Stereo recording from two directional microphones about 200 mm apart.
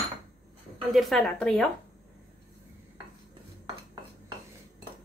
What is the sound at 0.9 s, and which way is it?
Speech, centre (ahead or behind).